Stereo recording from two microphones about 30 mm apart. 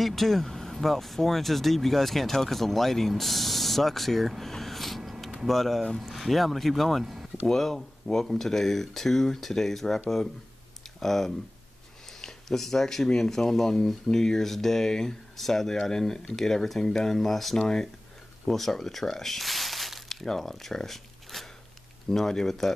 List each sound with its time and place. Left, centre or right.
0.0 s speech: centre
4.4 s a sound: centre
5.5 s speech: centre
7.4 s speech: centre
17.6 s speech: left
18.4 s speech: centre